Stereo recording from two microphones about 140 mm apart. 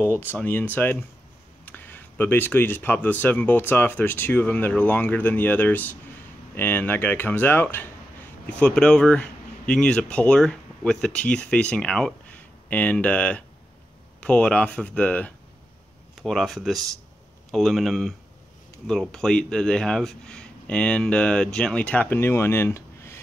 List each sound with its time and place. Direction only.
0.0 s speech: 15° left (ahead or behind)